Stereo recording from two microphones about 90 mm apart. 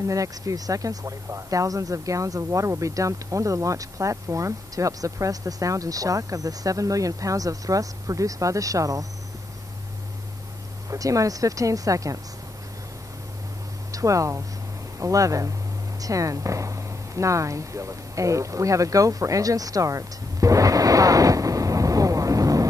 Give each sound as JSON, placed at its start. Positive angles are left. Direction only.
{"t": 0.0, "sound": "speech", "side_deg": -40}
{"t": 10.9, "sound": "speech", "side_deg": -40}
{"t": 13.9, "sound": "speech", "side_deg": -35}